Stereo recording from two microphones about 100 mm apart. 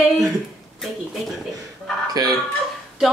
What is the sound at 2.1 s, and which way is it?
Speech, 40° right (ahead or behind).